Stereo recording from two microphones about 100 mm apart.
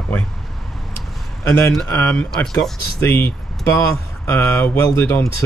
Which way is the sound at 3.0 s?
25° left (ahead or behind).